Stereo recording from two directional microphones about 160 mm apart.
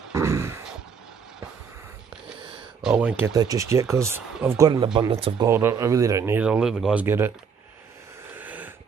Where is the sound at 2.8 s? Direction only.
5° right (ahead or behind).